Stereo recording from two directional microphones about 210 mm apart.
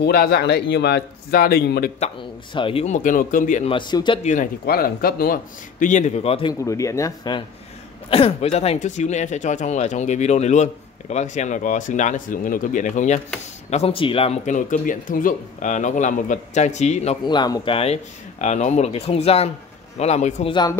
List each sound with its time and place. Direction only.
0.0 s a man's voice: 45° left (ahead or behind)
2.5 s speech: 25° left (ahead or behind)
3.7 s speech: 20° left (ahead or behind)
4.2 s speech: 35° left (ahead or behind)
6.6 s speech: 15° left (ahead or behind); by 20.5 s 35° left (ahead or behind)